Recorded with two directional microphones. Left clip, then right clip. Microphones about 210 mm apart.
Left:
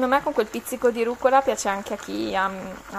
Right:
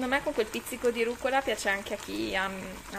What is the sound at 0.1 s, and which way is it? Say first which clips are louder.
Speech: left 7 dB; 20° left (ahead or behind).